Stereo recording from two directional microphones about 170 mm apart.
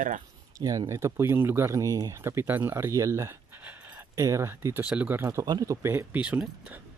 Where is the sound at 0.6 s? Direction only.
20° right (ahead or behind).